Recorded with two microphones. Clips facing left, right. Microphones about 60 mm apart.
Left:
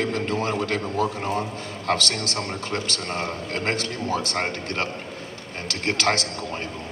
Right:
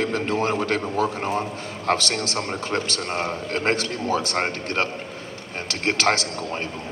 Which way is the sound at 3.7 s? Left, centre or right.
Left.